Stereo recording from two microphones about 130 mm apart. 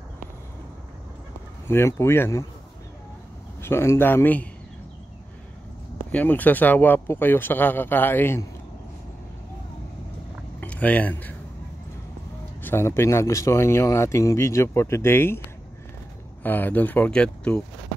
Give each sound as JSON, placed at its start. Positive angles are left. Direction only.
{"t": 1.7, "sound": "speech", "side_deg": 20}
{"t": 3.6, "sound": "speech", "side_deg": 20}
{"t": 6.1, "sound": "speech", "side_deg": 15}
{"t": 10.6, "sound": "speech", "side_deg": 10}
{"t": 12.6, "sound": "speech", "side_deg": 20}
{"t": 16.4, "sound": "speech", "side_deg": 15}